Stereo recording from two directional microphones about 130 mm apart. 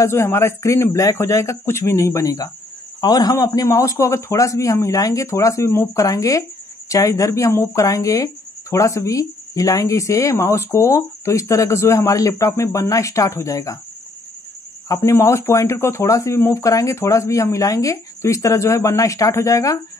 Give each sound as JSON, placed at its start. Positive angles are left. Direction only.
{"t": 0.0, "sound": "speech", "side_deg": 20}
{"t": 14.9, "sound": "speech", "side_deg": 20}